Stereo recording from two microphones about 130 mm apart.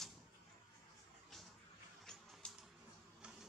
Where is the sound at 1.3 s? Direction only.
Centre (ahead or behind).